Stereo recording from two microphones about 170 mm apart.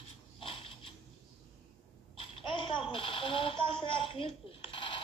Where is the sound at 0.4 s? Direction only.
35° left (ahead or behind).